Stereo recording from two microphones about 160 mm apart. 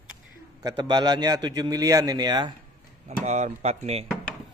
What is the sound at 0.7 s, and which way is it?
Speech, 25° right (ahead or behind).